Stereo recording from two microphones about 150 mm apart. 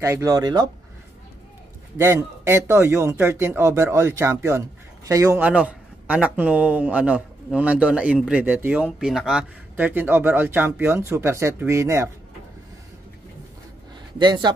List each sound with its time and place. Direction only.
0.0 s speech: 20° right (ahead or behind)
2.0 s a man's voice: 20° right (ahead or behind)
14.1 s speech: 30° right (ahead or behind)